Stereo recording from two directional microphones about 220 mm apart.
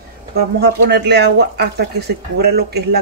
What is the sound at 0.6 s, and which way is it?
Speech, 50° right (ahead or behind).